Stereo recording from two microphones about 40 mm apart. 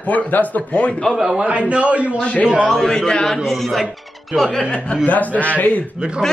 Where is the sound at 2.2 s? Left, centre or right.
Left.